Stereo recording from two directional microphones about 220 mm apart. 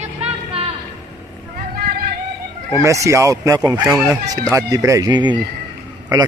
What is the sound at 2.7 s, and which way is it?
A man's voice, 15° right (ahead or behind).